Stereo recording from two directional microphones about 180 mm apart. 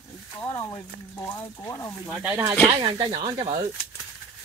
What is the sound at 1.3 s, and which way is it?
Speech, 15° left (ahead or behind).